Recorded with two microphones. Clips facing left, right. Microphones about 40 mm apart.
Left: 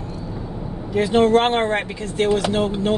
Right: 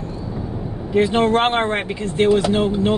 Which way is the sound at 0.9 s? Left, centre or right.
Right.